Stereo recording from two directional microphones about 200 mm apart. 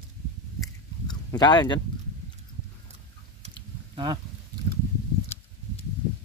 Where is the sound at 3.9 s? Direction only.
20° right (ahead or behind).